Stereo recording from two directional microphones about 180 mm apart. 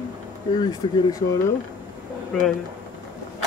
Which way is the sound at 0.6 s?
20° left (ahead or behind).